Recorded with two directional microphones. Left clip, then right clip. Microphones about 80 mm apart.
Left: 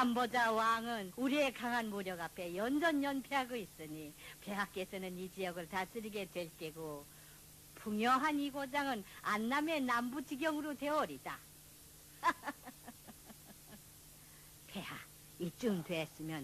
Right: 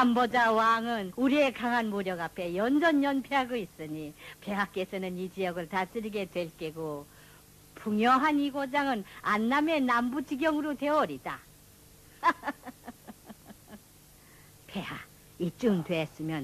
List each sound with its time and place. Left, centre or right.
0.0 s speech: left
12.2 s a sound: left
14.7 s speech: left